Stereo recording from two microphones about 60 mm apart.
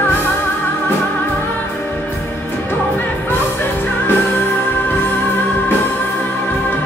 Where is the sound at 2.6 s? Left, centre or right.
Left.